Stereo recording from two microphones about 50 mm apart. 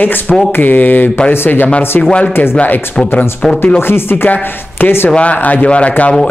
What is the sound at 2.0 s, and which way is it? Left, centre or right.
Speech, left.